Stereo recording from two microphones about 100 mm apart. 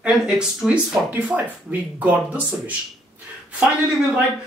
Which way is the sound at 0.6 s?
10° right (ahead or behind).